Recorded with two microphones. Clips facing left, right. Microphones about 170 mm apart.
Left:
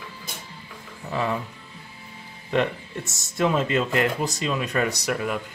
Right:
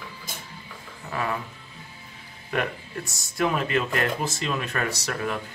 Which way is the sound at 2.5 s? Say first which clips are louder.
Left 5 dB; 25° left (ahead or behind).